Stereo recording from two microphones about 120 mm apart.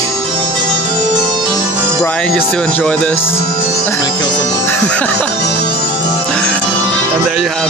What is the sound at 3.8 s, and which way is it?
Music, 25° left (ahead or behind).